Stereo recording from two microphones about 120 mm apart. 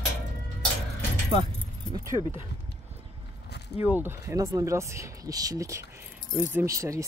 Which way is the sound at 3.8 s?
15° right (ahead or behind).